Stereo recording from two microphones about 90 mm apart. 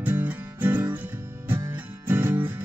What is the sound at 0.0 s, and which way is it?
Music, 20° right (ahead or behind).